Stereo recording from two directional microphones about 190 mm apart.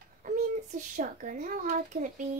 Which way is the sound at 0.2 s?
45° right (ahead or behind).